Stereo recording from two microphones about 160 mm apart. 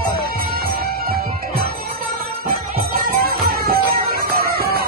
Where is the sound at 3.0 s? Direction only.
70° right (ahead or behind).